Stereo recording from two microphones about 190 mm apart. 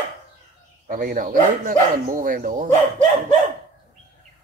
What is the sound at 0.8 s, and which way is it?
Speech, 45° right (ahead or behind).